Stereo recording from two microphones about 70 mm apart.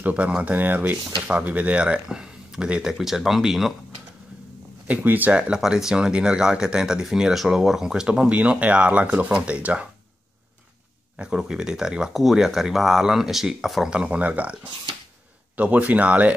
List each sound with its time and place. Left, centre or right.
0.0 s speech: centre
4.8 s speech: right
5.3 s speech: centre
11.1 s speech: centre
13.8 s speech: centre